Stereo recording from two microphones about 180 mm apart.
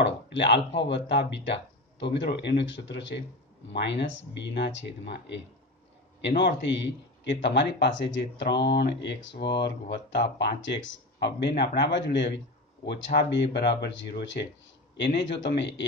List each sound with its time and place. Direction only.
0.0 s a man's voice: 75° left (ahead or behind)
10.6 s a man's voice: 85° left